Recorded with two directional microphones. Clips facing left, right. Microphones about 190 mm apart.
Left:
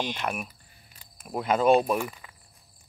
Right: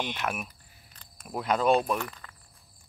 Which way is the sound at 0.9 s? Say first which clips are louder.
Left 3 dB; 5° left (ahead or behind).